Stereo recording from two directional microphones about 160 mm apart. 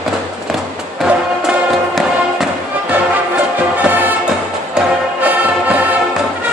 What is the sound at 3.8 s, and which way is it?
Music, 10° right (ahead or behind).